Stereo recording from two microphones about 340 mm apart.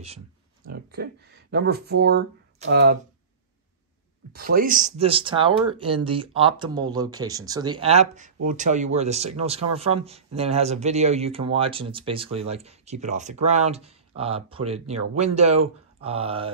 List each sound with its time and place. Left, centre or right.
0.7 s speech: right
4.3 s speech: right